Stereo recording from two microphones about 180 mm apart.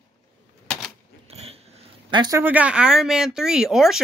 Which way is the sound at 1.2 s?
35° right (ahead or behind).